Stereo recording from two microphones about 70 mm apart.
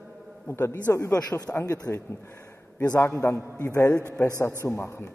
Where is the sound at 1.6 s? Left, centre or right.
Left.